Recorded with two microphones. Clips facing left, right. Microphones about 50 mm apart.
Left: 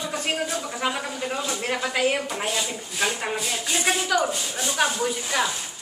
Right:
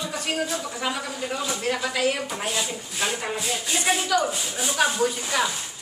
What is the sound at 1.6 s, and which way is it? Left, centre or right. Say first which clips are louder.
Speech: left 1 dB; centre.